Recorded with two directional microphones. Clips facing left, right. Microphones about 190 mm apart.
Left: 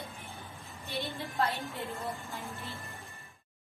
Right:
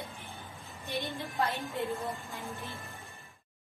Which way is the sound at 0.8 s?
15° right (ahead or behind).